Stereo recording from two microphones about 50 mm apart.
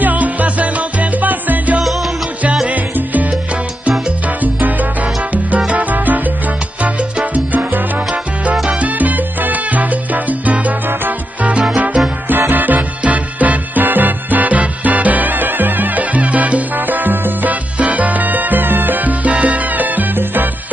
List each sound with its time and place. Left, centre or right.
0.0 s music: right
2.7 s salsa music: right
4.4 s salsa music: right
12.3 s music: right